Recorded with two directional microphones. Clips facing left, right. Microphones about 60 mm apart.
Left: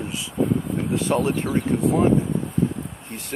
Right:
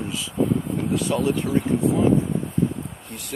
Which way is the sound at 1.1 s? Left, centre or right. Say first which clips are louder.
Left 2 dB; left.